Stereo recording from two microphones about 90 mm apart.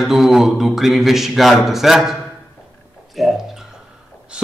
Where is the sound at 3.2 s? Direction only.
Centre (ahead or behind).